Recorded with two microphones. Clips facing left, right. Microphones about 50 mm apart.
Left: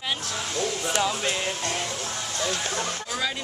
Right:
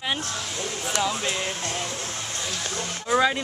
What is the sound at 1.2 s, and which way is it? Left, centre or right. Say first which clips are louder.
Speech: even; centre.